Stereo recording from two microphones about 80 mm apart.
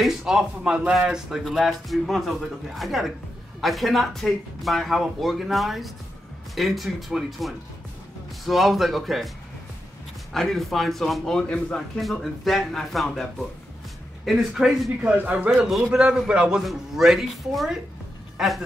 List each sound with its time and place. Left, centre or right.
0.3 s a man's voice: centre
10.3 s a man's voice: centre
15.0 s a man's voice: centre